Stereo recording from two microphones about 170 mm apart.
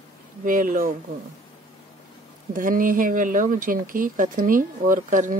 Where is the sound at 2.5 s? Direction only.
55° right (ahead or behind).